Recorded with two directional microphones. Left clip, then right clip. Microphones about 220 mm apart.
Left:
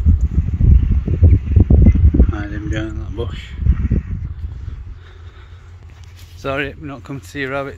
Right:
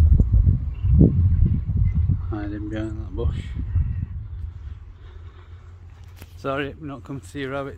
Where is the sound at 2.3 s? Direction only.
5° right (ahead or behind).